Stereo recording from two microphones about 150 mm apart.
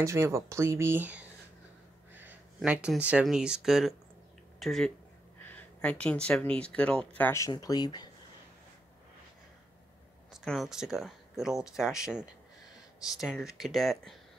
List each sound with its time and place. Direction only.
0.0 s speech: 20° right (ahead or behind); by 7.1 s 5° left (ahead or behind)
7.2 s speech: 15° left (ahead or behind)
7.5 s speech: 25° left (ahead or behind)
10.3 s speech: centre (ahead or behind)